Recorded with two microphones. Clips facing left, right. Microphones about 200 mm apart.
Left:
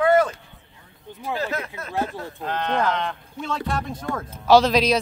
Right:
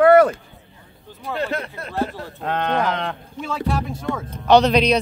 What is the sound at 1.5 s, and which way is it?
Speech, 35° right (ahead or behind).